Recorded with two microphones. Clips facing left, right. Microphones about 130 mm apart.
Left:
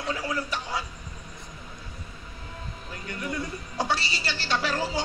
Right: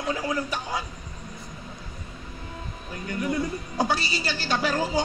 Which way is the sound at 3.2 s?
25° right (ahead or behind).